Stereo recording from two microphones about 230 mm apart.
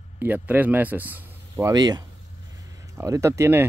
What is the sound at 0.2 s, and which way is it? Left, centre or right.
Speech, centre.